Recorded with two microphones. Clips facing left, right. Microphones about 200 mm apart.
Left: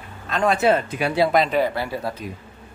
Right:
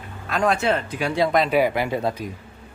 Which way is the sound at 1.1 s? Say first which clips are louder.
Left 1 dB; 5° left (ahead or behind).